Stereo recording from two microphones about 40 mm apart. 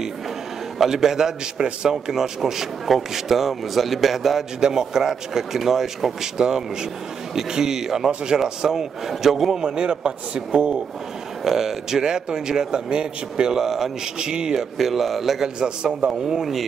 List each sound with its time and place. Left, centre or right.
0.7 s a man's voice: centre
4.6 s a man's voice: centre
9.6 s a man's voice: right
11.4 s a man's voice: centre
14.2 s a man's voice: centre
15.4 s a man's voice: centre